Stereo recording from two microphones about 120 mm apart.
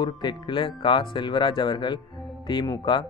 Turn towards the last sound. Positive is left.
turn(degrees=40)  # may be behind; listen again after turning